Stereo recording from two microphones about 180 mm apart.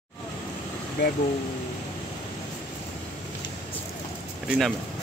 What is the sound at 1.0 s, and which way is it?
Speech, 70° left (ahead or behind).